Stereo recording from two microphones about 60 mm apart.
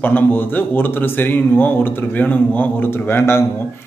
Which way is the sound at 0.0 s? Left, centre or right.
Left.